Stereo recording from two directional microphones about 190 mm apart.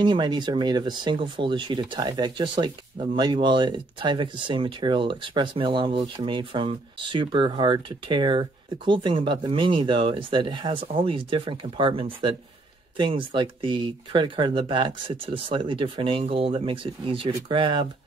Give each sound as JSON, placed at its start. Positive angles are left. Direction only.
{"t": 0.0, "sound": "speech", "side_deg": -25}